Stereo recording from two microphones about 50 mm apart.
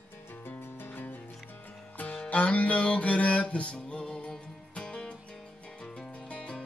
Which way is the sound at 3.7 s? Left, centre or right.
Centre.